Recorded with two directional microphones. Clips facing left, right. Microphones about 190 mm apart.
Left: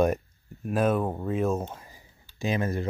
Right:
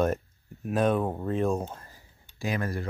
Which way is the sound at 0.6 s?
5° left (ahead or behind).